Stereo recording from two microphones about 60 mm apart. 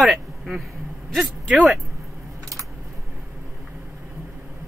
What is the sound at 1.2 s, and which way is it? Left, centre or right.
Speech, centre.